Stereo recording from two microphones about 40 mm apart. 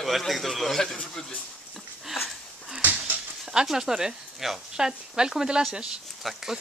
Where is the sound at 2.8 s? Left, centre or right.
Right.